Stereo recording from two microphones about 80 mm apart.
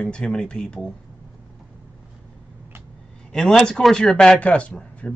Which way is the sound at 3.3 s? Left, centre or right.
Centre.